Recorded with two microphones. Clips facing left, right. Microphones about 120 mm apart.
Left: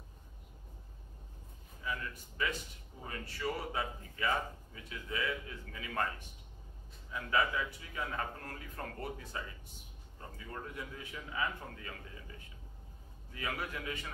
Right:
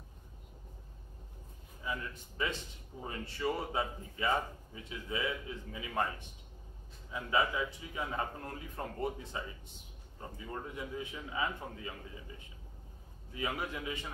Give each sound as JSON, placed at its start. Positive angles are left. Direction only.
{"t": 1.8, "sound": "a man's voice", "side_deg": -25}
{"t": 13.3, "sound": "a man's voice", "side_deg": -20}